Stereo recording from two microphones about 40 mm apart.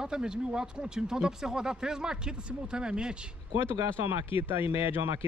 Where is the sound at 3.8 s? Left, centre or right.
Right.